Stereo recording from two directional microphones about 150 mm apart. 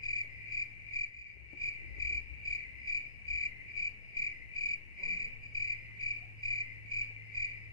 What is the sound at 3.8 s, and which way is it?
Cricket, 25° left (ahead or behind).